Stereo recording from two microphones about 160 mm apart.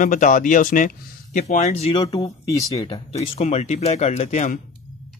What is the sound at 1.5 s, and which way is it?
Speech, 45° left (ahead or behind).